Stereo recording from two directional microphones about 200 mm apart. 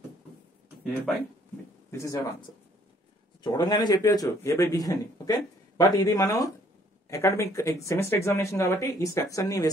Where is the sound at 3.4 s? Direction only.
20° left (ahead or behind).